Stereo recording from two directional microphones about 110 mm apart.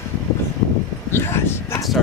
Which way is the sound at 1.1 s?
20° left (ahead or behind).